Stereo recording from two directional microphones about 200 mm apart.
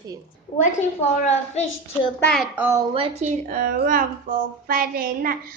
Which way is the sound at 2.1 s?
5° left (ahead or behind).